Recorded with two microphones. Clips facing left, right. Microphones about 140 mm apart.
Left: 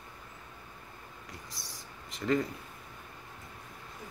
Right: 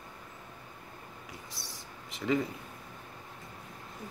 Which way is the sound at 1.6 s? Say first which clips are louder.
Right 2 dB; 30° right (ahead or behind).